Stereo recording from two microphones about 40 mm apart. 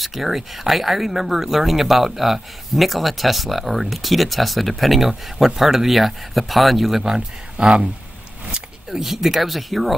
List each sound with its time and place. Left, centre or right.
0.0 s speech: centre; by 7.8 s right
8.5 s a sound: right
9.0 s speech: centre